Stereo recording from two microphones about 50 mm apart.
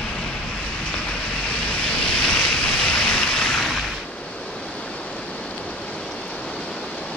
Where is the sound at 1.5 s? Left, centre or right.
Left.